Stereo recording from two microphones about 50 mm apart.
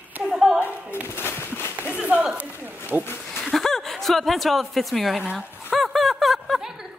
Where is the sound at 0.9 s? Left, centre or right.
Left.